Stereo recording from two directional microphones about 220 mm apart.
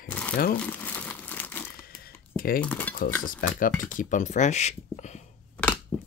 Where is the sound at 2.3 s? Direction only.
40° left (ahead or behind).